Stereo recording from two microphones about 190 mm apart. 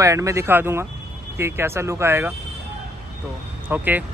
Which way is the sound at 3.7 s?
10° right (ahead or behind).